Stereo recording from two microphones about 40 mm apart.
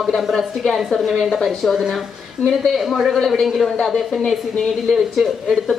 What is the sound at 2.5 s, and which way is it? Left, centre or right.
A woman's voice, centre.